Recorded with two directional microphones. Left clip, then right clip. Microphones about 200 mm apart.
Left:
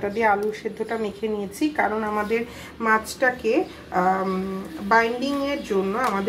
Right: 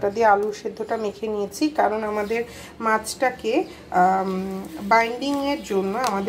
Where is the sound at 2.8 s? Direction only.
15° right (ahead or behind).